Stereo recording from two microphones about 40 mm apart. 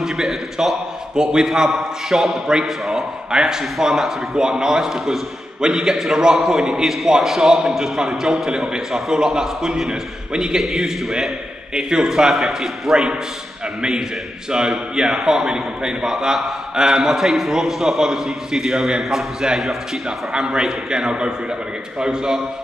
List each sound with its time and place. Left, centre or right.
0.0 s a man's voice: centre
3.7 s speech: centre
4.4 s a man's voice: centre
5.6 s a man's voice: centre
9.8 s a man's voice: centre
10.6 s a man's voice: centre
11.7 s a man's voice: centre
12.1 s a man's voice: centre
15.0 s a man's voice: centre
20.3 s a man's voice: right